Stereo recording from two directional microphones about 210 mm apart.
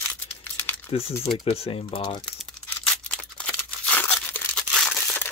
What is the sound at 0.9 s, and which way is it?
Speech, 25° left (ahead or behind).